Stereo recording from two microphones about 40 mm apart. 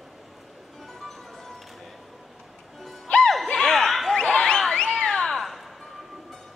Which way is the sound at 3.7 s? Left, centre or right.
Centre.